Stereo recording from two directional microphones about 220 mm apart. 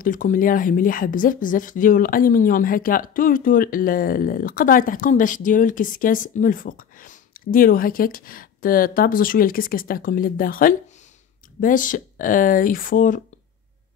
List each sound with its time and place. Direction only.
0.0 s a woman's voice: 40° left (ahead or behind)